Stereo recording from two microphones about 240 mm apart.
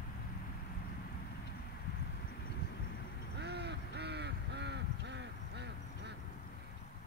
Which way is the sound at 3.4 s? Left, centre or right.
Right.